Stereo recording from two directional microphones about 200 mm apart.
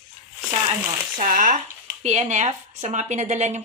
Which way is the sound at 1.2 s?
40° right (ahead or behind).